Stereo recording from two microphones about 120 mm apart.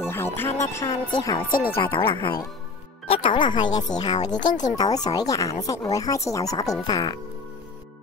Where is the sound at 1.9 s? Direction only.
45° left (ahead or behind).